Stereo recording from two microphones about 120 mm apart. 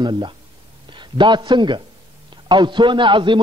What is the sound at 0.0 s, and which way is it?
A man's voice, 40° right (ahead or behind).